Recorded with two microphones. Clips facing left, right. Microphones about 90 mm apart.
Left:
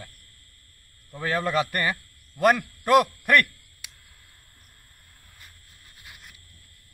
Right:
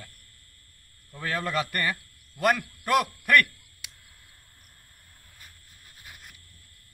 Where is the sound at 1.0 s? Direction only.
20° left (ahead or behind).